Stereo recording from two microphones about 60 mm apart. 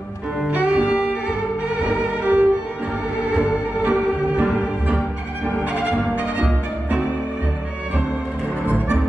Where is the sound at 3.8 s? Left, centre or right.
Right.